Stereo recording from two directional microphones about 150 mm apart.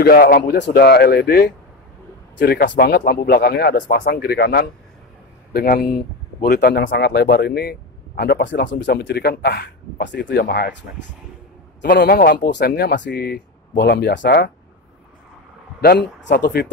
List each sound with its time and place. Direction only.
0.0 s a man's voice: 85° left; by 5.9 s 65° left (ahead or behind)
6.4 s speech: 90° left
11.9 s speech: 85° left
15.8 s speech: 90° left